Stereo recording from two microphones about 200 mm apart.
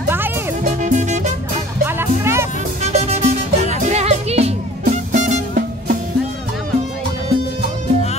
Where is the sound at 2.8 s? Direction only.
35° right (ahead or behind).